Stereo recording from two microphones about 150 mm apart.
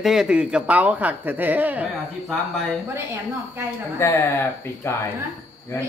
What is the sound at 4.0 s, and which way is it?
Speech, 15° left (ahead or behind).